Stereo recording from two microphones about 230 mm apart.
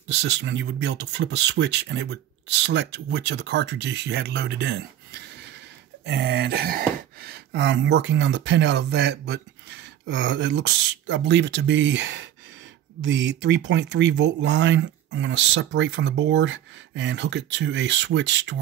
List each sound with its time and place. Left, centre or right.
0.1 s speech: right